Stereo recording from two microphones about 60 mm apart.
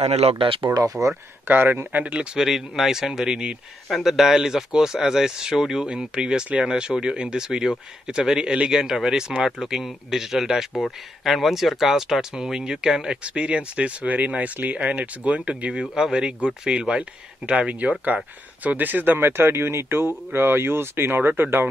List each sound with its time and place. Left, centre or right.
1.0 s speech: right
1.5 s speech: right
2.3 s speech: centre; by 21.6 s right